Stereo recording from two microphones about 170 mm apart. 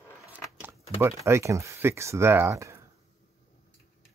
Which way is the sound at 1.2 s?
15° right (ahead or behind).